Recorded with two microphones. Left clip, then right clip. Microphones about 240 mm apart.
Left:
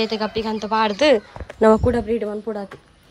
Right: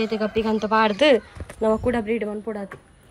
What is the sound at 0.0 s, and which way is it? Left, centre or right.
Speech, centre.